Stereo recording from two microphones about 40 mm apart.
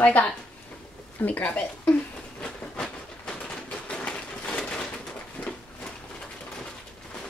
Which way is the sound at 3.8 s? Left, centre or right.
Left.